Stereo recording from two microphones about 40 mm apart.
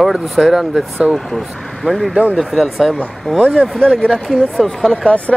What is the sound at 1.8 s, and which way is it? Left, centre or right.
Speech, centre.